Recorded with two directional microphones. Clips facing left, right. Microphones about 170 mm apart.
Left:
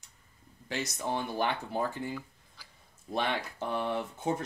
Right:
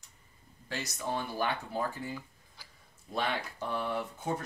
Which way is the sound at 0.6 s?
20° left (ahead or behind).